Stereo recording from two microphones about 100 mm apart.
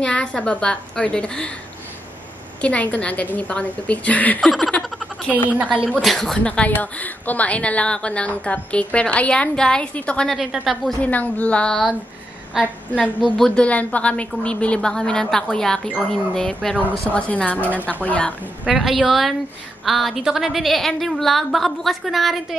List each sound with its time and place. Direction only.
0.0 s a woman's voice: 10° left (ahead or behind)
2.6 s a woman's voice: 15° left (ahead or behind)
4.4 s a sound: 5° left (ahead or behind)
5.5 s speech: 15° right (ahead or behind)
5.9 s a woman's voice: centre (ahead or behind)
11.0 s a woman's voice: 15° left (ahead or behind)
18.8 s a woman's voice: centre (ahead or behind)